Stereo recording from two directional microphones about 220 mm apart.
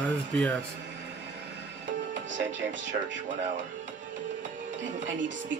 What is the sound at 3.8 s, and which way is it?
Music, 35° right (ahead or behind).